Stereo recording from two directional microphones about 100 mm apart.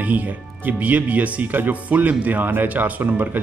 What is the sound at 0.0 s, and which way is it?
A man's voice, 15° right (ahead or behind).